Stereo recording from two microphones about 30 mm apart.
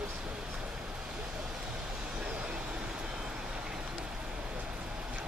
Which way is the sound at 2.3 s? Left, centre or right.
Right.